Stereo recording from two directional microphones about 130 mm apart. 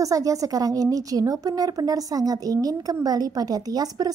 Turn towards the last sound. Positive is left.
turn(degrees=-30)  # may be behind; listen again after turning